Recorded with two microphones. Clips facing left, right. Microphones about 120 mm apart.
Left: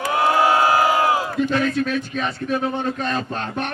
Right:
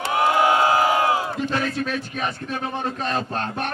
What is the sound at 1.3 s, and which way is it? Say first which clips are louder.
A man's voice: left 4 dB; 30° right (ahead or behind).